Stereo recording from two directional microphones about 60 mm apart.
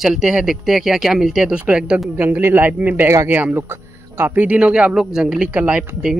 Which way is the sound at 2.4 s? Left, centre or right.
Right.